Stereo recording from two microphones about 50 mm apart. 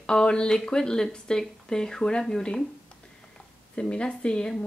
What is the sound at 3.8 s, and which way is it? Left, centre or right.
Speech, centre.